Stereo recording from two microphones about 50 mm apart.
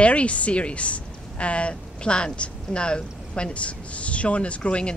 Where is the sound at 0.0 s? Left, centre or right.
Left.